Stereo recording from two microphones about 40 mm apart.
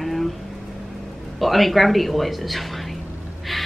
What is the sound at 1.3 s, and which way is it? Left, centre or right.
Speech, centre.